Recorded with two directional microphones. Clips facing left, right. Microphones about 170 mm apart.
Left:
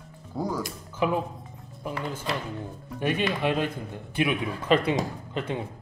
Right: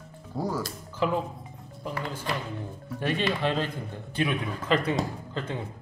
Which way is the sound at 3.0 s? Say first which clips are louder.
Left 1 dB; 15° left (ahead or behind).